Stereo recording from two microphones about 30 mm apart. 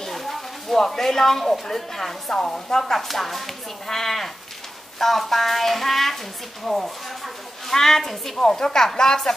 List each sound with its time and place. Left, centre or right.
0.1 s a sound: centre
0.7 s a woman's voice: centre
7.6 s a woman's voice: centre